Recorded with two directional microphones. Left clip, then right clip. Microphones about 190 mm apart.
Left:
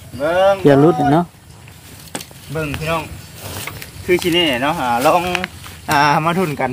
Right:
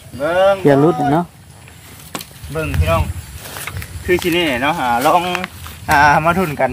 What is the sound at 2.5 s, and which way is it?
Speech, centre (ahead or behind).